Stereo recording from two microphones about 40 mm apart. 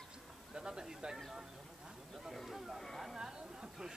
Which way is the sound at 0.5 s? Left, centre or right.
Centre.